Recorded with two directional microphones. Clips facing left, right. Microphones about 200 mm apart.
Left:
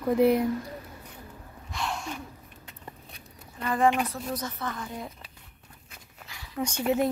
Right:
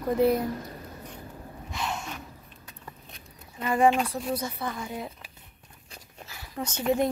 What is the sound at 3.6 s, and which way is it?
Speech, 10° right (ahead or behind).